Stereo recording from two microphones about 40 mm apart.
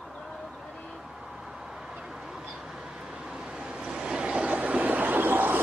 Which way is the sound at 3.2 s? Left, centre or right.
Right.